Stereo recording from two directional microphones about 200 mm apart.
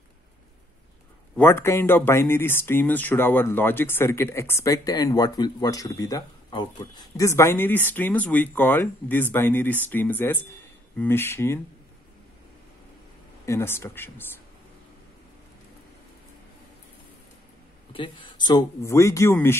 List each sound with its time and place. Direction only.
1.3 s speech: 10° left (ahead or behind)
13.5 s speech: 10° left (ahead or behind)
17.9 s speech: 25° left (ahead or behind)